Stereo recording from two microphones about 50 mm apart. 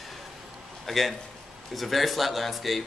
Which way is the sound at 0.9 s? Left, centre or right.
Centre.